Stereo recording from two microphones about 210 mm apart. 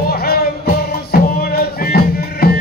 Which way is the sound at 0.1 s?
45° left (ahead or behind).